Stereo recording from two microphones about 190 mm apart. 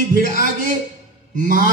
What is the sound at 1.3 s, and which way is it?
Speech, 45° right (ahead or behind).